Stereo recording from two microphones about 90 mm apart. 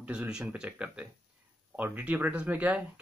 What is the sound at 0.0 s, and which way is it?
Speech, 10° right (ahead or behind).